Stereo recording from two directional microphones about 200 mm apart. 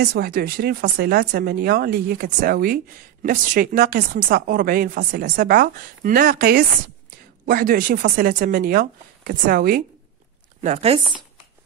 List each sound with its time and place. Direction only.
0.0 s speech: 50° right (ahead or behind)
10.6 s speech: 30° right (ahead or behind)